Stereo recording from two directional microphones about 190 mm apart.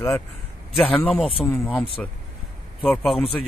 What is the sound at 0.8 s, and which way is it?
Speech, 5° left (ahead or behind).